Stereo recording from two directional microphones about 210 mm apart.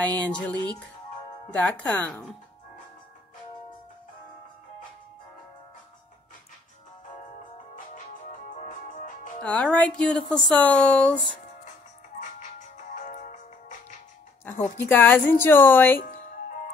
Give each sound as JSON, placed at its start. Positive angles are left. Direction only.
{"t": 0.0, "sound": "a woman's voice", "side_deg": 5}
{"t": 7.7, "sound": "music", "side_deg": 40}
{"t": 9.4, "sound": "speech", "side_deg": 5}
{"t": 12.9, "sound": "music", "side_deg": 35}
{"t": 14.4, "sound": "a woman's voice", "side_deg": 10}